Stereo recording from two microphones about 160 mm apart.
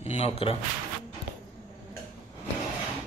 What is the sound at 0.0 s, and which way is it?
Speech, 40° left (ahead or behind).